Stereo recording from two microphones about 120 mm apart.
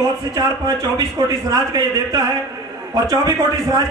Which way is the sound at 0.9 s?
35° right (ahead or behind).